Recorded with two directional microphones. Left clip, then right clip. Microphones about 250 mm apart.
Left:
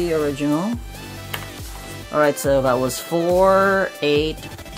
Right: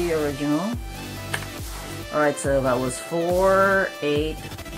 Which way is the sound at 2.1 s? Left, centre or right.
Left.